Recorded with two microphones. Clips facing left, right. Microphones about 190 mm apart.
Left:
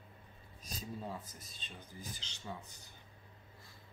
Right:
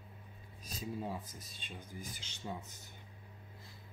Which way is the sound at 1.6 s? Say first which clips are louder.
Right 2 dB; 15° right (ahead or behind).